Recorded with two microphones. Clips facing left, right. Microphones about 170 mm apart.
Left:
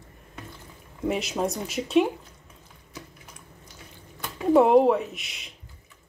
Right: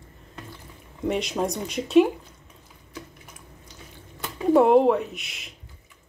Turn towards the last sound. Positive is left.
turn(degrees=0)  # may be behind; listen again after turning